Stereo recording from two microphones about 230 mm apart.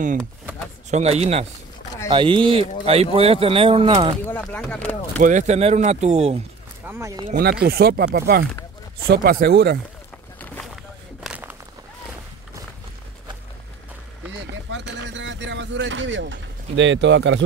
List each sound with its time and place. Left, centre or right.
0.8 s speech: right
4.3 s speech: centre
5.2 s speech: right
6.9 s speech: centre
7.2 s speech: right
10.4 s vehicle: centre
11.2 s a sound: centre
14.7 s vehicle: right